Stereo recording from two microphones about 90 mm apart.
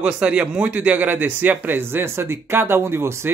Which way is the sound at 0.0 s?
10° right (ahead or behind).